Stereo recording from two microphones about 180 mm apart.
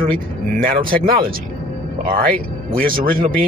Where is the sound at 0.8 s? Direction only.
50° right (ahead or behind).